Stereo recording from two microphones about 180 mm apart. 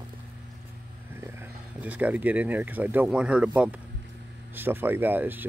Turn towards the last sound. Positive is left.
turn(degrees=-10)  # may be behind; listen again after turning